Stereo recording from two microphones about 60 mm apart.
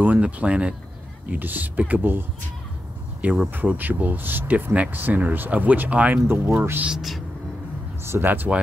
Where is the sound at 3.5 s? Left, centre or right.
Right.